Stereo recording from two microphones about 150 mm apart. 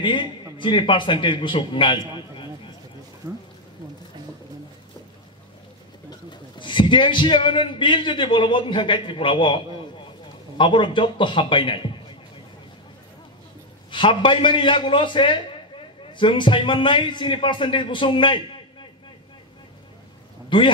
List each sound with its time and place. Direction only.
0.0 s a man's voice: 30° left (ahead or behind)
6.0 s a man's voice: 30° left (ahead or behind)
13.8 s a man's voice: 35° left (ahead or behind)
20.4 s speech: 35° left (ahead or behind)